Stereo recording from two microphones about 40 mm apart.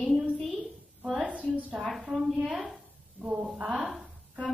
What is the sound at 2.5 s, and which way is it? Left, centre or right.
Speech, right.